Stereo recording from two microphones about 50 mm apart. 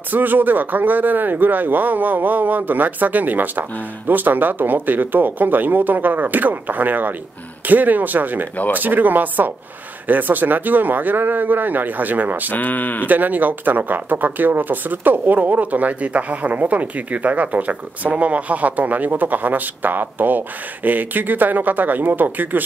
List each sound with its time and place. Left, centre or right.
0.1 s speech: right
12.4 s speech: left
13.0 s speech: right